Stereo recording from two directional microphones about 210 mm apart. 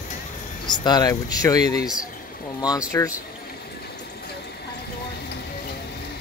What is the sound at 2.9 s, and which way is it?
Speech, 15° left (ahead or behind).